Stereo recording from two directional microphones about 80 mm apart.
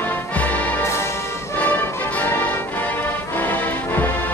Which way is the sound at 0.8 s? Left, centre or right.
Left.